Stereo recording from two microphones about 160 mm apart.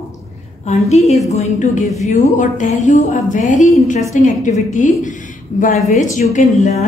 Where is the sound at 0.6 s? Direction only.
45° left (ahead or behind).